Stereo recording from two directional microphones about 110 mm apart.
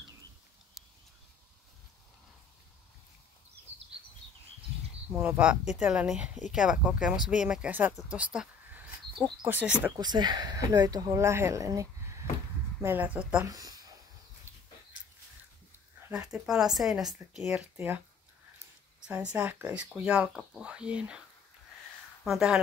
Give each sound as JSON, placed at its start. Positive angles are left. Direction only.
{"t": 5.1, "sound": "speech", "side_deg": -15}
{"t": 9.9, "sound": "speech", "side_deg": -40}
{"t": 12.8, "sound": "speech", "side_deg": -15}
{"t": 13.5, "sound": "a sound", "side_deg": -35}
{"t": 14.5, "sound": "a sound", "side_deg": -20}
{"t": 16.1, "sound": "speech", "side_deg": -5}
{"t": 17.7, "sound": "speech", "side_deg": -15}
{"t": 18.9, "sound": "a sound", "side_deg": -10}
{"t": 19.3, "sound": "speech", "side_deg": -10}
{"t": 22.2, "sound": "speech", "side_deg": -5}